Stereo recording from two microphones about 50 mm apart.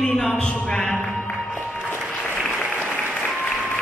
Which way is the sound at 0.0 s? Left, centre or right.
Centre.